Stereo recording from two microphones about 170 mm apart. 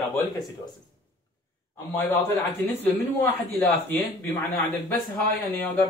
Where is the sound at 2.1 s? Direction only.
10° left (ahead or behind).